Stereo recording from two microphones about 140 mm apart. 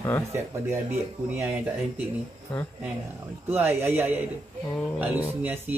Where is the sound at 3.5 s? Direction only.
15° right (ahead or behind).